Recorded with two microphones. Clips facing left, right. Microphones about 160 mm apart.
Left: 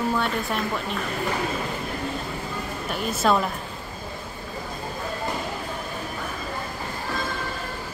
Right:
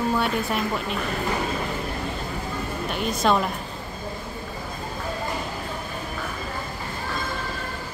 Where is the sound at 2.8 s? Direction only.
5° left (ahead or behind).